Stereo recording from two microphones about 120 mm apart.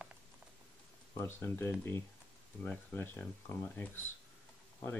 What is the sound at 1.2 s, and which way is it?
Speech, 20° left (ahead or behind).